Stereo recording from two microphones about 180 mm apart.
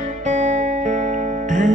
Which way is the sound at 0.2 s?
40° right (ahead or behind).